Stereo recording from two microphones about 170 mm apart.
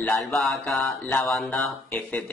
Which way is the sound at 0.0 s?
Centre (ahead or behind).